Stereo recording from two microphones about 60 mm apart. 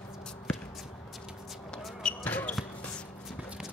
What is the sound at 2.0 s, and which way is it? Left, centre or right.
Basketball bounce, left.